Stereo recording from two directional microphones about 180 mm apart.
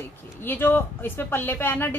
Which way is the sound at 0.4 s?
10° left (ahead or behind).